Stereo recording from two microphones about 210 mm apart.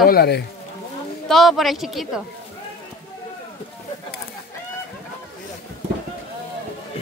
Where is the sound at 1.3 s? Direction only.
Centre (ahead or behind).